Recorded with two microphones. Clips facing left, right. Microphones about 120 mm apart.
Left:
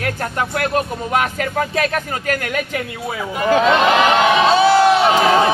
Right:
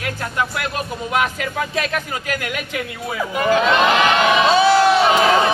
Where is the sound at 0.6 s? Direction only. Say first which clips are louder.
Left 5 dB; 45° left (ahead or behind).